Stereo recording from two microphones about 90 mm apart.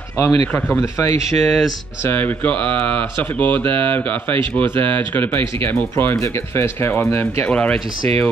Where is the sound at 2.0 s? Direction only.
20° left (ahead or behind).